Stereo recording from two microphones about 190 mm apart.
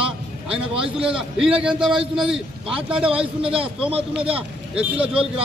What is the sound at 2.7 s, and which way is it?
A man's voice, 30° right (ahead or behind).